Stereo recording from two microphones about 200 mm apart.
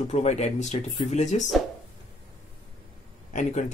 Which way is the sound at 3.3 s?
40° left (ahead or behind).